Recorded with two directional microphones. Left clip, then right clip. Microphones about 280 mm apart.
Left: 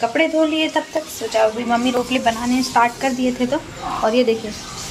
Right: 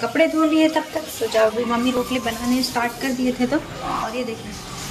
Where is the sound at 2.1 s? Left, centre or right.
Centre.